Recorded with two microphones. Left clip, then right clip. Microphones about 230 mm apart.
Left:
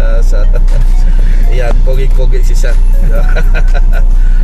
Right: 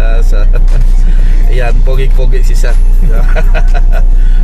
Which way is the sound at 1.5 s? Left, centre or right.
Right.